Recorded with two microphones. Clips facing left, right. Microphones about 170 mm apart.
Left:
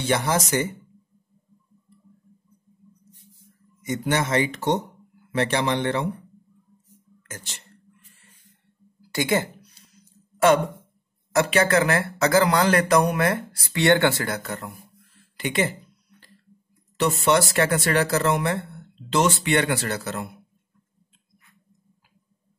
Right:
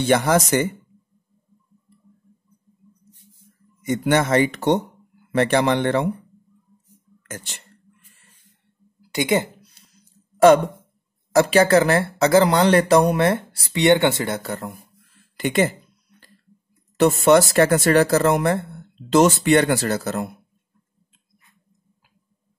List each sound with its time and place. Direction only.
0.0 s speech: 55° right (ahead or behind)
3.8 s speech: 55° right (ahead or behind)
7.2 s speech: 55° right (ahead or behind)
9.1 s speech: 20° right (ahead or behind)
11.5 s speech: 30° right (ahead or behind)
13.7 s speech: 20° right (ahead or behind); by 15.7 s 45° right (ahead or behind)
16.9 s speech: 50° right (ahead or behind)